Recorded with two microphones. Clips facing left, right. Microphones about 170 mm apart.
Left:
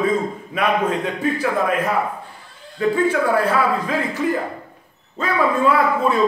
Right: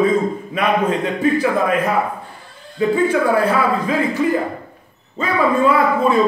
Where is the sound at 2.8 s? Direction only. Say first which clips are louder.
Right 2 dB; centre (ahead or behind).